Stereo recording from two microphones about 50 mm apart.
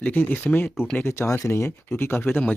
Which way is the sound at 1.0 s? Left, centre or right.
Left.